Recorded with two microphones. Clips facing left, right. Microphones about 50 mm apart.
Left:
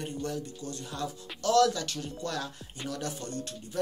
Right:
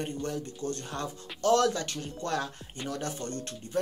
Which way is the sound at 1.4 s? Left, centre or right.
Right.